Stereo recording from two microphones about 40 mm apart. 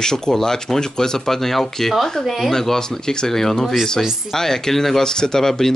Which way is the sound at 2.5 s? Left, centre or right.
Centre.